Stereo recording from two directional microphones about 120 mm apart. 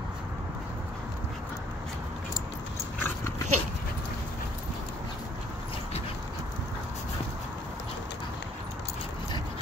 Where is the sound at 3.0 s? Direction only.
20° left (ahead or behind).